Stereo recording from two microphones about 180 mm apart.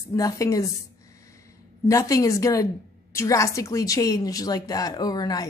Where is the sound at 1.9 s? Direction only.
20° left (ahead or behind).